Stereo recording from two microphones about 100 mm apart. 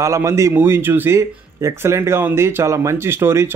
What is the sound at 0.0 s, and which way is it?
Speech, 30° right (ahead or behind).